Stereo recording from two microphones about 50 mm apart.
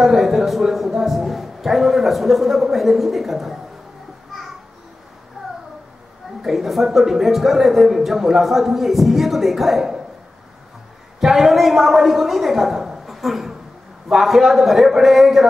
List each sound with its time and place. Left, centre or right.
0.0 s a man's voice: centre
5.4 s a sound: centre
6.4 s a man's voice: centre
11.1 s a woman's voice: centre